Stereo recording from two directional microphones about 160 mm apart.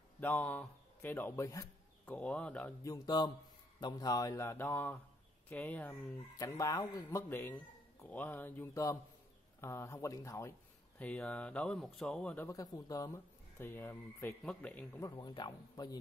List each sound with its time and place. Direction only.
0.2 s speech: 10° left (ahead or behind)
2.1 s speech: 10° left (ahead or behind)
2.8 s speech: 25° left (ahead or behind)
6.3 s speech: 20° left (ahead or behind)
11.0 s speech: 10° left (ahead or behind)
12.4 s speech: 20° left (ahead or behind)
15.0 s speech: 25° left (ahead or behind)